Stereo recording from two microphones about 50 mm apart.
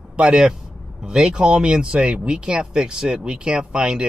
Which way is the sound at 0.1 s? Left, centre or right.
Centre.